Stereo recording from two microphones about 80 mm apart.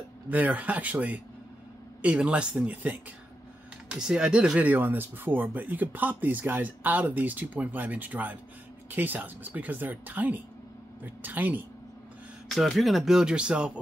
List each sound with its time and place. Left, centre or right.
0.3 s speech: centre
12.4 s speech: centre